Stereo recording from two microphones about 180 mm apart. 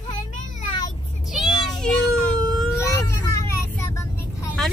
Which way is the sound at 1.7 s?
5° left (ahead or behind).